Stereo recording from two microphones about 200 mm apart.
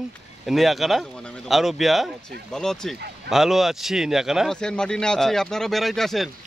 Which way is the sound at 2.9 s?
55° right (ahead or behind).